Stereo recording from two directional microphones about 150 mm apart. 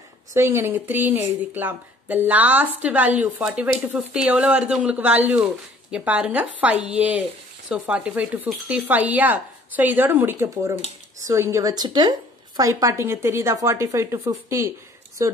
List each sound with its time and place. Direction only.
0.3 s a woman's voice: 20° right (ahead or behind)